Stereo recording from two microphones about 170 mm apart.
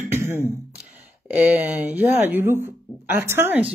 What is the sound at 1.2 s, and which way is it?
Speech, 10° right (ahead or behind).